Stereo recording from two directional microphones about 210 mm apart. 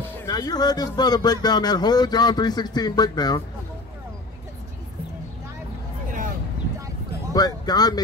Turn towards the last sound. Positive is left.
turn(degrees=20)  # may be behind; listen again after turning